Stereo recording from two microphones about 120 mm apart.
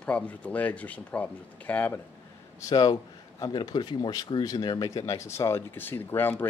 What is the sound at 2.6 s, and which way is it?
Speech, 35° left (ahead or behind).